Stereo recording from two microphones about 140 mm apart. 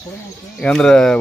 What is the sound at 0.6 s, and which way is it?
Speech, 5° left (ahead or behind).